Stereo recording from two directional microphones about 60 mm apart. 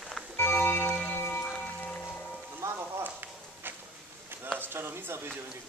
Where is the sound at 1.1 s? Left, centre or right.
Left.